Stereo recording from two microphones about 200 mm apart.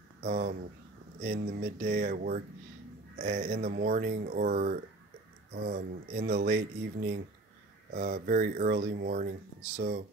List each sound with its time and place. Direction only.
0.2 s speech: 45° right (ahead or behind)